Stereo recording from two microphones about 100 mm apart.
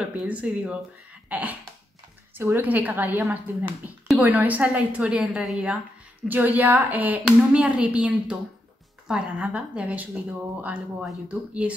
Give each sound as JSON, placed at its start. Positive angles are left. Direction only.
{"t": 0.3, "sound": "a woman's voice", "side_deg": -10}
{"t": 6.2, "sound": "a woman's voice", "side_deg": -15}